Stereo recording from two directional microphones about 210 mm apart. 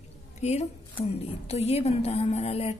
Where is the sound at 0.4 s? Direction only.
30° left (ahead or behind).